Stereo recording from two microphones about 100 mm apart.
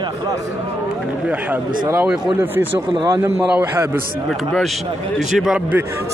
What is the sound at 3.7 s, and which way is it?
Speech, 25° right (ahead or behind).